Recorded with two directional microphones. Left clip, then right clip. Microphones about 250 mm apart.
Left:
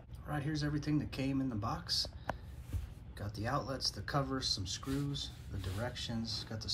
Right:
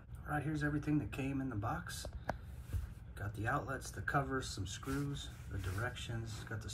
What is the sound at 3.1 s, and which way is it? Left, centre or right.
Speech, centre.